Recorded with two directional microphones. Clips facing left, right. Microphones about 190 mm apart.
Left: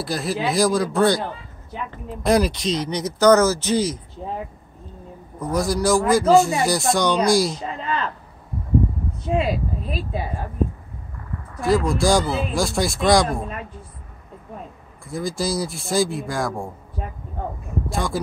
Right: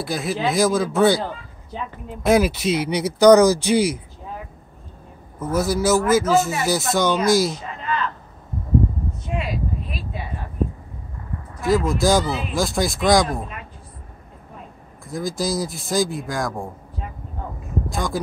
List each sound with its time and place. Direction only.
0.0 s speech: centre (ahead or behind)
2.2 s speech: 5° right (ahead or behind)
4.2 s a sound: 40° left (ahead or behind)
5.4 s speech: 5° right (ahead or behind)
9.3 s a sound: 30° left (ahead or behind)
11.6 s speech: centre (ahead or behind)
15.0 s speech: centre (ahead or behind)
17.9 s speech: centre (ahead or behind)